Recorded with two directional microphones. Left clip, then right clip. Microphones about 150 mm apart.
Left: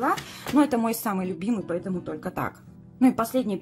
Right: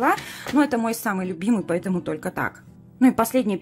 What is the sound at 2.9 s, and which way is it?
Speech, 15° right (ahead or behind).